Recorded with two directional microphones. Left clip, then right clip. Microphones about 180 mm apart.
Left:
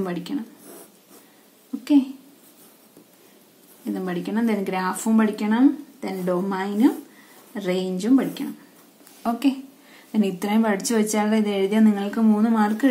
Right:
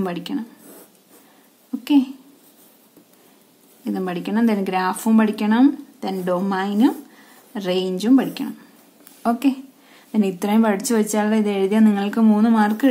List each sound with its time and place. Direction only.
0.0 s a woman's voice: 30° right (ahead or behind)
3.8 s a woman's voice: 30° right (ahead or behind)